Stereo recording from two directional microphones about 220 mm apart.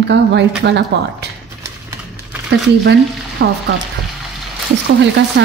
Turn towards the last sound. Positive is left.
turn(degrees=-50)  # may be behind; listen again after turning